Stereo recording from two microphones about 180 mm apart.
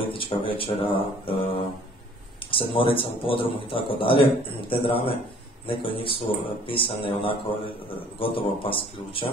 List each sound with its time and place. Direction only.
0.1 s a man's voice: 30° left (ahead or behind)
2.5 s a man's voice: 30° left (ahead or behind)